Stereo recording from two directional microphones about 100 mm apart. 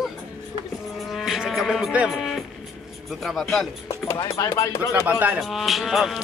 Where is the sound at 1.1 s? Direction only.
Centre (ahead or behind).